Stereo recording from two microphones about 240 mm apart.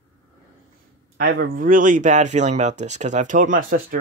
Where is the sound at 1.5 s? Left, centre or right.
Right.